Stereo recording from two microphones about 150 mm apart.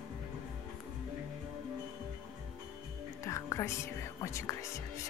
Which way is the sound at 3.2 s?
20° left (ahead or behind).